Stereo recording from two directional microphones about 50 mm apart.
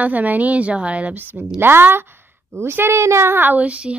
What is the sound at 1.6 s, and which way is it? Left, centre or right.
A woman's voice, right.